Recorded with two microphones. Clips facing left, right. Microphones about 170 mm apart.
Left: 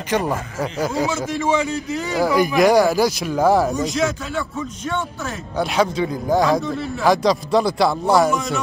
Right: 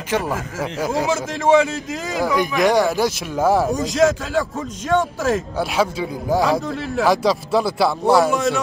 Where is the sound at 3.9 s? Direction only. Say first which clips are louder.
Right 5 dB; 40° right (ahead or behind).